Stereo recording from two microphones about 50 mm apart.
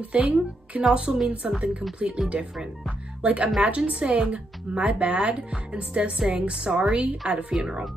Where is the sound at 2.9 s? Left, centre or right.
Right.